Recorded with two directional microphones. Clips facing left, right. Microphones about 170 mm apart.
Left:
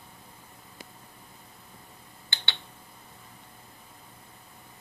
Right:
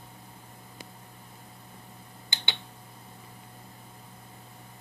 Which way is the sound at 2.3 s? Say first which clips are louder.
Right 1 dB; 20° right (ahead or behind).